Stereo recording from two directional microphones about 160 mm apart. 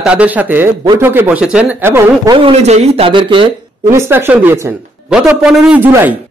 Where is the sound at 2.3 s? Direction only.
35° right (ahead or behind).